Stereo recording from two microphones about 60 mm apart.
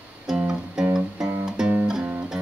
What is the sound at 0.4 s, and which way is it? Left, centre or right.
Music, centre.